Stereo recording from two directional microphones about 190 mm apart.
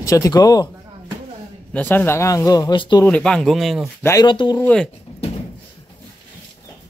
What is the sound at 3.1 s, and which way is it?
Speech, 5° left (ahead or behind).